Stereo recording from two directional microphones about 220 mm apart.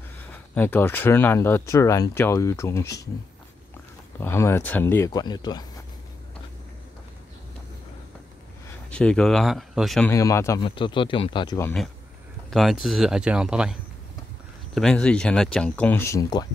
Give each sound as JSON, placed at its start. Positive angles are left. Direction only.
{"t": 0.2, "sound": "speech", "side_deg": 10}
{"t": 4.2, "sound": "speech", "side_deg": 10}
{"t": 8.9, "sound": "speech", "side_deg": 5}
{"t": 10.1, "sound": "speech", "side_deg": 15}
{"t": 12.4, "sound": "a sound", "side_deg": 0}
{"t": 12.8, "sound": "speech", "side_deg": 0}